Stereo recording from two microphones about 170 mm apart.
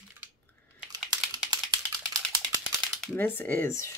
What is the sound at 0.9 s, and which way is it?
Typing, 25° right (ahead or behind).